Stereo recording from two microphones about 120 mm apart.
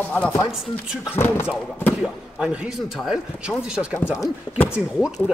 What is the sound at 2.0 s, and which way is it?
Speech, 5° right (ahead or behind).